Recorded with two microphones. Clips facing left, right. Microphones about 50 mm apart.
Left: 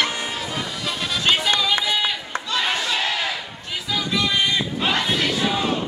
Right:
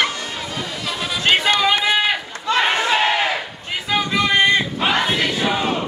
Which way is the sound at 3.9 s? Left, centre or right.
Right.